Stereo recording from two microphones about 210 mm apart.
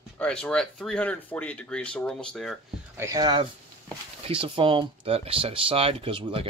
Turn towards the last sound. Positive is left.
turn(degrees=-25)  # may be behind; listen again after turning